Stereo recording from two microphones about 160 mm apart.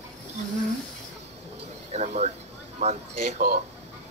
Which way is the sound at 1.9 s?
40° right (ahead or behind).